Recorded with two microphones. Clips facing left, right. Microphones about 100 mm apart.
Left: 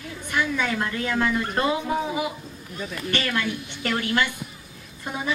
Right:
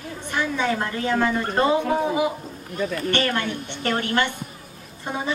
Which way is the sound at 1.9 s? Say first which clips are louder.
Right 4 dB; 40° right (ahead or behind).